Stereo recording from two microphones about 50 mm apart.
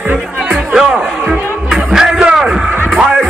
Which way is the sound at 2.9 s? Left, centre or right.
Centre.